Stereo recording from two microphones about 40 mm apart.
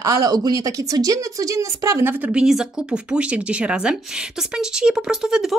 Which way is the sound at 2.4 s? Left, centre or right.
Centre.